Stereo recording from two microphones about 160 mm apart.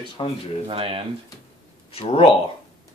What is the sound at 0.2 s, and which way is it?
Speech, 30° left (ahead or behind).